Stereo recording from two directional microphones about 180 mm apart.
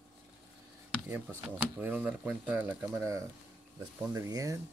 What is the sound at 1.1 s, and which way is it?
Speech, 5° right (ahead or behind).